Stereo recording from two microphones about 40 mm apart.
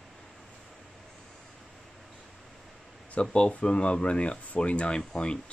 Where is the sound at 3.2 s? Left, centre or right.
Left.